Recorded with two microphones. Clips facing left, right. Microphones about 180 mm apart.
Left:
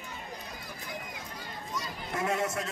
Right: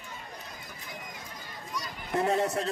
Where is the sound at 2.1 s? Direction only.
35° right (ahead or behind).